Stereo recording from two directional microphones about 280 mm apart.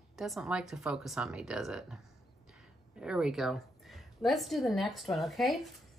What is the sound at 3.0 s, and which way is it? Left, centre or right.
A woman's voice, centre.